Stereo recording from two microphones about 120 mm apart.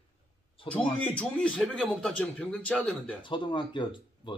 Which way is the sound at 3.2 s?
40° left (ahead or behind).